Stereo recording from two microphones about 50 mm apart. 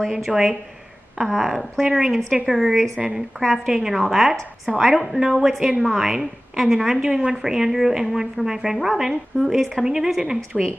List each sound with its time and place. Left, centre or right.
0.1 s a woman's voice: centre
3.0 s speech: centre
3.3 s a woman's voice: centre